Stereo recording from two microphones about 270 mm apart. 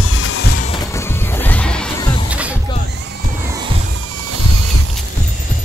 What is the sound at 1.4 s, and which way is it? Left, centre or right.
Music, centre.